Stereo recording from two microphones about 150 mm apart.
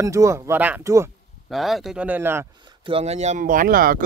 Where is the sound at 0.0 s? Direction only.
20° right (ahead or behind).